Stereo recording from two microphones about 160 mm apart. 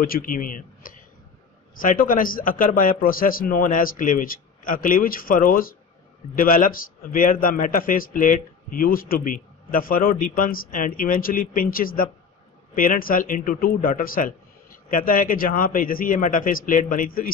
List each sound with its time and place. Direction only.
0.0 s a man's voice: 65° left (ahead or behind)